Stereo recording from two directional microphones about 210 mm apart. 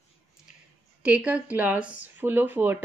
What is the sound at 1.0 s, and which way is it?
Speech, 5° right (ahead or behind).